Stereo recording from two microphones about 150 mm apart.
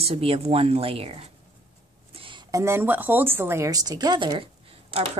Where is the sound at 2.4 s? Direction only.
20° right (ahead or behind); by 5.1 s 40° right (ahead or behind).